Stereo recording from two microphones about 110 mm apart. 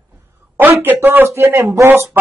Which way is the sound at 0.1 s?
20° right (ahead or behind).